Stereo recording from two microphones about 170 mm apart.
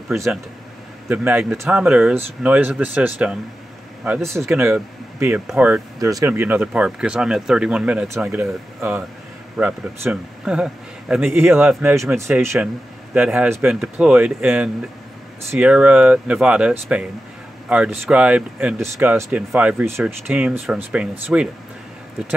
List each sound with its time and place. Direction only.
1.0 s speech: 10° right (ahead or behind)
4.5 s speech: 10° right (ahead or behind)
5.9 s speech: 20° right (ahead or behind)